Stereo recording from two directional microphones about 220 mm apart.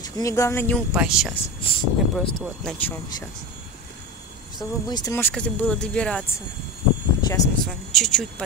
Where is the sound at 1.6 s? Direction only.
25° left (ahead or behind).